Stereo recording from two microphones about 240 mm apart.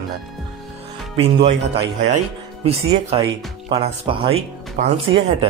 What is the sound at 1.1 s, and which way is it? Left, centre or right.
Speech, right.